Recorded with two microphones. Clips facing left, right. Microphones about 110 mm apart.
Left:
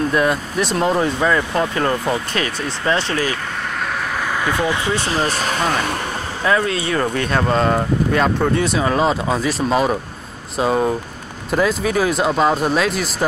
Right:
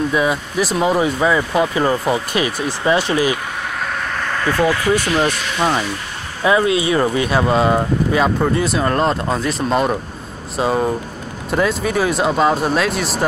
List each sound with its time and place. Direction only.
0.1 s speech: 5° right (ahead or behind)
4.5 s speech: 15° left (ahead or behind)
5.1 s speech: 40° left (ahead or behind)
6.4 s speech: 15° right (ahead or behind)